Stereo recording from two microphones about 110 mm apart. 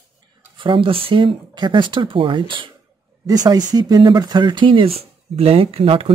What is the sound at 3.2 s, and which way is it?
Speech, 35° right (ahead or behind).